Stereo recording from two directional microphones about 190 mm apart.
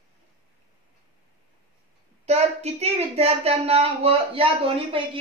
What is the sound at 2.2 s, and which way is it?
Speech, 35° right (ahead or behind).